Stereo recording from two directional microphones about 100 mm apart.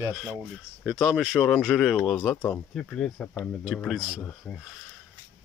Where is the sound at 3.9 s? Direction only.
15° right (ahead or behind).